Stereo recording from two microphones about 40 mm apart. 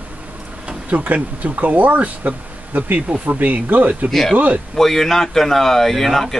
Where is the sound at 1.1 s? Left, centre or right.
Right.